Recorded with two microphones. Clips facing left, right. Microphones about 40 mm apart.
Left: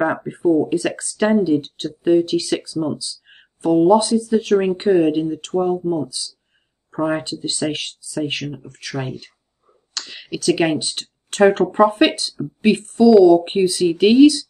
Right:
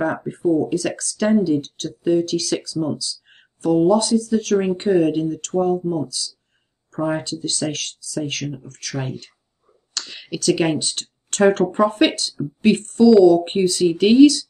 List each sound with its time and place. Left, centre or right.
0.3 s speech: left
9.9 s speech: centre